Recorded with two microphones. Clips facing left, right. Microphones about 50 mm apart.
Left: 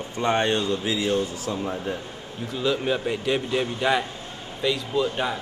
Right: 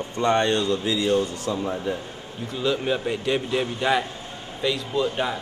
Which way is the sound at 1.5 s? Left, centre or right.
Left.